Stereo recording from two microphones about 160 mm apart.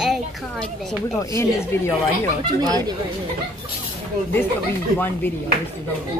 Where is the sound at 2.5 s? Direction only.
25° right (ahead or behind).